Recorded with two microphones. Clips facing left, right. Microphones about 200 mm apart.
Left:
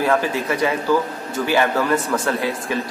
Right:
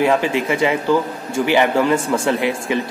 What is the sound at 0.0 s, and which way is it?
A man's voice, 20° right (ahead or behind).